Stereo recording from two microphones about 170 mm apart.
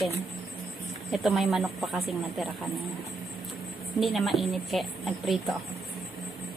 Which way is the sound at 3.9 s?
Centre (ahead or behind).